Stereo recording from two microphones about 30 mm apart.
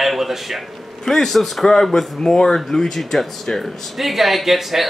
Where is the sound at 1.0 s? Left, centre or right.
Centre.